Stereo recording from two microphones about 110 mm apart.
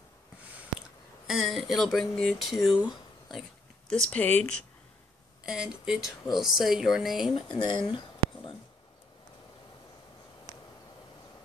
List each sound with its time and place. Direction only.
1.2 s speech: 5° right (ahead or behind)
2.9 s a sound: centre (ahead or behind)
3.9 s speech: 10° left (ahead or behind)
5.4 s speech: 5° right (ahead or behind)
7.5 s speech: 45° left (ahead or behind)